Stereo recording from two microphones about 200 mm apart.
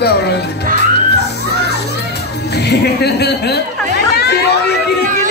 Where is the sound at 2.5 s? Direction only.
55° left (ahead or behind).